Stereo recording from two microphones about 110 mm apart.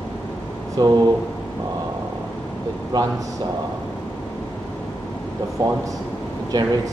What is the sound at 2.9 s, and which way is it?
Speech, 35° right (ahead or behind).